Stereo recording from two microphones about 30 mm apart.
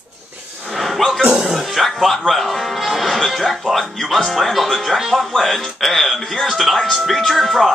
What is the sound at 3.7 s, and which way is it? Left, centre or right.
Speech, centre.